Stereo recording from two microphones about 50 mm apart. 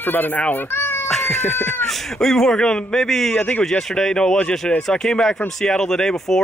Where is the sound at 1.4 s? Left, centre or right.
Left.